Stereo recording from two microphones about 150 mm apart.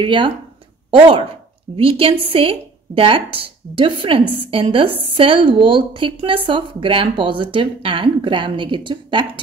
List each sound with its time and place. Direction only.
0.0 s a woman's voice: 35° right (ahead or behind)